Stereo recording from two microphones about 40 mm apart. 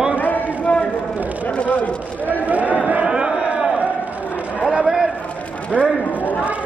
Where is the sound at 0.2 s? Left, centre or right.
Left.